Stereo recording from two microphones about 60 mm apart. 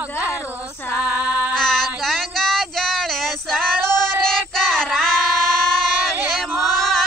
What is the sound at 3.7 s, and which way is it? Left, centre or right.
Female singing, right.